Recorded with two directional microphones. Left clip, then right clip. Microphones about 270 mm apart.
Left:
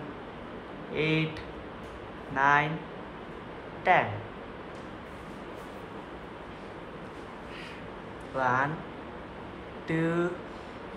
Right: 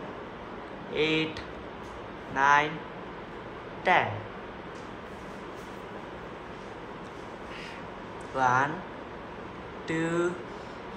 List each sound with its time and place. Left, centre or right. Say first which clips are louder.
0.9 s speech: right 2 dB; centre
2.3 s speech: right 1 dB; centre
3.9 s speech: even; centre
8.4 s speech: right 2 dB; centre
9.8 s speech: even; centre